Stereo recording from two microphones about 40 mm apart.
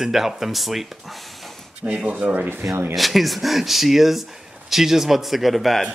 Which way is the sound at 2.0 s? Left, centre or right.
Right.